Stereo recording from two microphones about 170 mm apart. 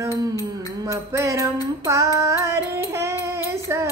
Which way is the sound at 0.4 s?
20° right (ahead or behind).